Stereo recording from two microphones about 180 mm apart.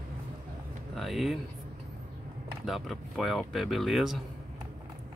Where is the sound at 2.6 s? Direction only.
Centre (ahead or behind).